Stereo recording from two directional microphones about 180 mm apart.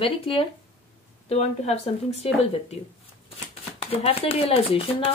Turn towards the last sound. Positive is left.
turn(degrees=30)  # may be behind; listen again after turning